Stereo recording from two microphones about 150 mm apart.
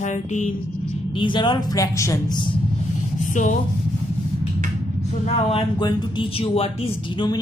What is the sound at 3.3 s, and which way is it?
Speech, 55° left (ahead or behind).